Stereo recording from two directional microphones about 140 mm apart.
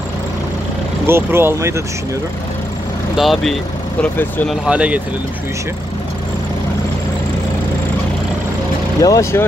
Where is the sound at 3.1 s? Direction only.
Centre (ahead or behind).